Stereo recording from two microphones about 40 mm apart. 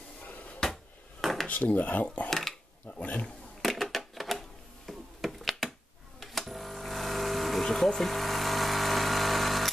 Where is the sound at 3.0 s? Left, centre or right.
Left.